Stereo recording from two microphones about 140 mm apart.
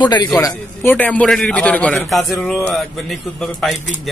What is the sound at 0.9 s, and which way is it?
Speech, 10° left (ahead or behind).